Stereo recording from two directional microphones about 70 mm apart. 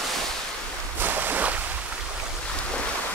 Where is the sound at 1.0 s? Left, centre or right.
Right.